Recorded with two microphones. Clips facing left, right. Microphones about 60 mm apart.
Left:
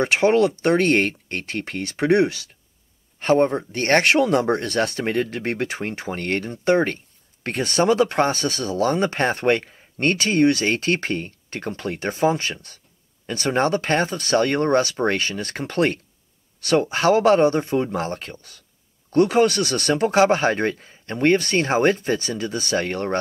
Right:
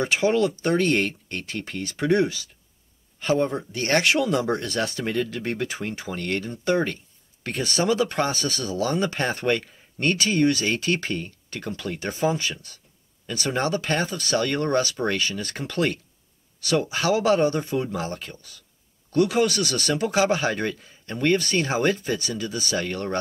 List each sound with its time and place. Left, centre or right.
0.0 s speech: left